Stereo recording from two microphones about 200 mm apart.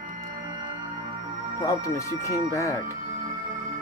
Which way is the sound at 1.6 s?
15° left (ahead or behind).